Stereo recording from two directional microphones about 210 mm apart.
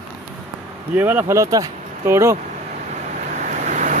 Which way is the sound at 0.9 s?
10° right (ahead or behind).